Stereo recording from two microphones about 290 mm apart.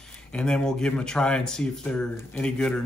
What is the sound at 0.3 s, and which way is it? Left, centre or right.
Speech, centre.